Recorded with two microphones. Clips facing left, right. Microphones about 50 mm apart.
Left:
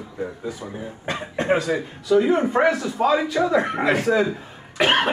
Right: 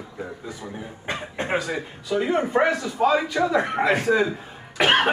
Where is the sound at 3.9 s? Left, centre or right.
Right.